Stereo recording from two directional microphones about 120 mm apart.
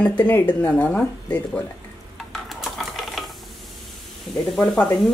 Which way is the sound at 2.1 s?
Centre (ahead or behind).